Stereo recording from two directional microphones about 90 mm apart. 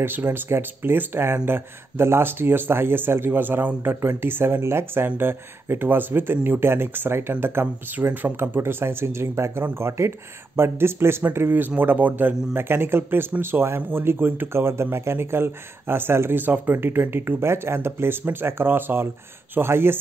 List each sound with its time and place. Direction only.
0.0 s speech: 25° right (ahead or behind)